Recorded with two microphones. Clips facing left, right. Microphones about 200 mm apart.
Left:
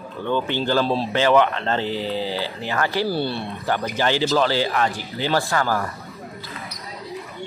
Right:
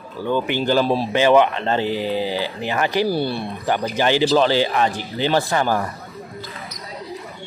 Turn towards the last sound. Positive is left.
turn(degrees=-20)  # may be behind; listen again after turning